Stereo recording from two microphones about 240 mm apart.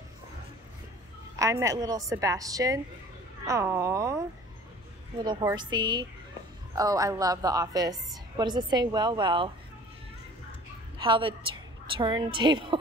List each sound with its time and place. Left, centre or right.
1.3 s speech: centre
5.2 s speech: centre
11.0 s a woman's voice: right